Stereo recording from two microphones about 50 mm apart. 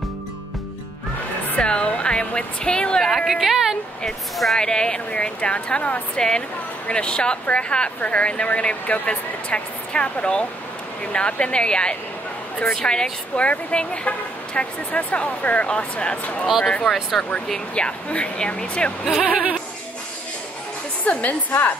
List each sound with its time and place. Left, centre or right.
1.6 s speech: left
3.3 s speech: centre
4.6 s speech: centre
19.2 s a sound: right
21.0 s a woman's voice: left